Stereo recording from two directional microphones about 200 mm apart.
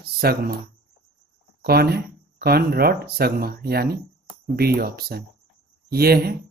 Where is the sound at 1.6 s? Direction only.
50° right (ahead or behind).